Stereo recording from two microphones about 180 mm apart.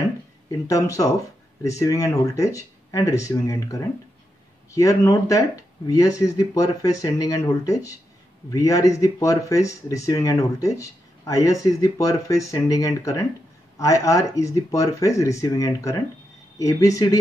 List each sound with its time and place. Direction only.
0.5 s speech: 20° left (ahead or behind)